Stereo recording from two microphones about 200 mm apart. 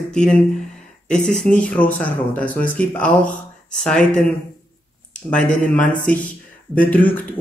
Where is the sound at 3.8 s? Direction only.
5° left (ahead or behind).